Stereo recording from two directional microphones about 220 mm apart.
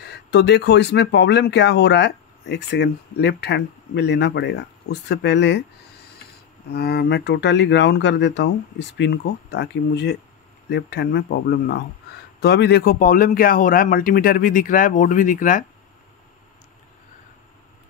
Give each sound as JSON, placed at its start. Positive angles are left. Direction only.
{"t": 0.0, "sound": "speech", "side_deg": 50}
{"t": 6.7, "sound": "a man's voice", "side_deg": 45}